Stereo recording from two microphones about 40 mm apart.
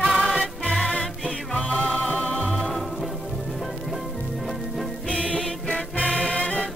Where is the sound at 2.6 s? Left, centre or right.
Centre.